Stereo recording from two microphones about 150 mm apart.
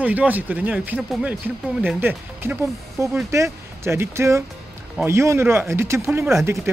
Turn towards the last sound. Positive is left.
turn(degrees=-20)  # may be behind; listen again after turning